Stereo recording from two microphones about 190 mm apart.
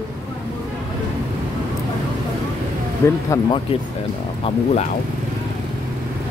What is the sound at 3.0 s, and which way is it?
Speech, 15° left (ahead or behind).